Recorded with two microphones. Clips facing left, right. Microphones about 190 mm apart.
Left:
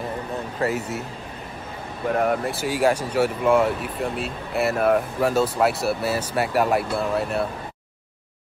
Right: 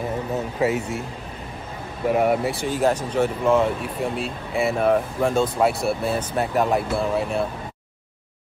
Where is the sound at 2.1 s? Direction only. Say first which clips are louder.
Right 2 dB; 5° right (ahead or behind).